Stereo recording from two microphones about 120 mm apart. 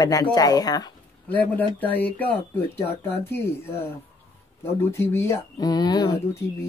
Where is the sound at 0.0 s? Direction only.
30° left (ahead or behind).